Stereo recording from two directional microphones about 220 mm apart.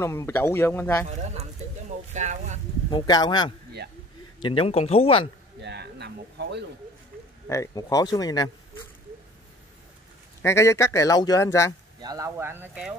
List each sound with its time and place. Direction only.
0.0 s speech: 10° left (ahead or behind)
1.0 s speech: 30° right (ahead or behind)
2.9 s speech: 20° left (ahead or behind)
5.6 s a sound: 50° right (ahead or behind)
7.4 s speech: 15° left (ahead or behind)
10.4 s speech: 10° left (ahead or behind)
12.0 s speech: 15° right (ahead or behind)